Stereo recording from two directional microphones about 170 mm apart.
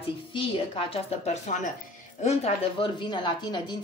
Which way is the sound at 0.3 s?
30° left (ahead or behind).